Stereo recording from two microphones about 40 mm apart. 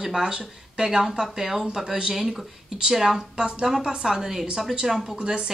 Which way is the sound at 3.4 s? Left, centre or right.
Centre.